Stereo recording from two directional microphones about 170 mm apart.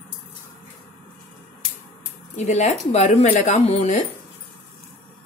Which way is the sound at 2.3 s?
45° left (ahead or behind).